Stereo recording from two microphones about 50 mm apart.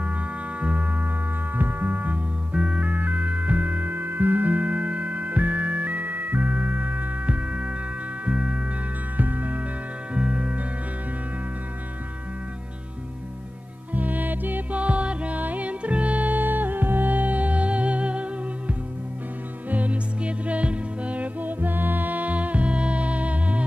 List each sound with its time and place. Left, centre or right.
0.6 s music: right
1.6 s music: right
2.5 s music: right
9.1 s music: right
10.1 s music: right
13.9 s music: right
19.7 s music: right